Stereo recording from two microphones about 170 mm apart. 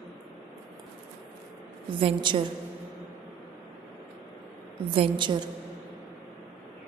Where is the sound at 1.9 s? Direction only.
30° right (ahead or behind).